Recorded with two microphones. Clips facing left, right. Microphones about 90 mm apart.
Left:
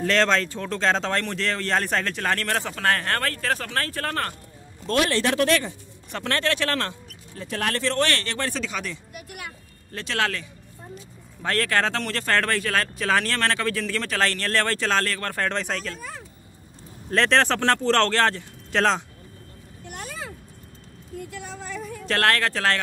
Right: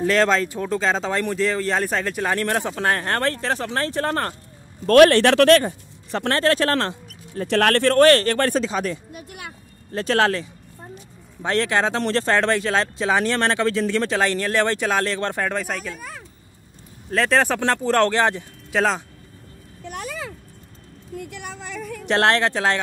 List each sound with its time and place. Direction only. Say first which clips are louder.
0.0 s speech: right 3 dB; 5° right (ahead or behind); by 4.4 s 25° right (ahead or behind)
4.8 s speech: right 10 dB; 60° right (ahead or behind)
5.5 s speech: right 8 dB; 50° right (ahead or behind)
6.1 s speech: right 6 dB; 30° right (ahead or behind)
7.4 s speech: right 8 dB; 70° right (ahead or behind); by 10.5 s 30° right (ahead or behind)
11.4 s speech: right 3 dB; 20° right (ahead or behind)
12.0 s speech: right 8 dB; 30° right (ahead or behind)
12.3 s speech: right 1 dB; 20° right (ahead or behind)
15.4 s speech: right 2 dB; 5° right (ahead or behind)
16.0 s speech: even; 65° right (ahead or behind)
17.1 s speech: right 1 dB; 5° right (ahead or behind)
19.9 s a sound: right 5 dB; 90° right
21.3 s a sound: right 1 dB; 80° right
22.0 s speech: right 4 dB; 20° right (ahead or behind)